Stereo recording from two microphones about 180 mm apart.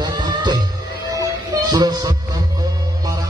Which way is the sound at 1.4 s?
25° right (ahead or behind).